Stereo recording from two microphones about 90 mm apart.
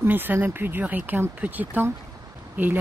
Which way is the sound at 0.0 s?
20° right (ahead or behind).